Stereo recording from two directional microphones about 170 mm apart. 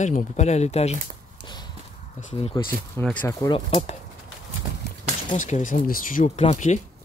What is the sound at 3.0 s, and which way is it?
Speech, 10° left (ahead or behind).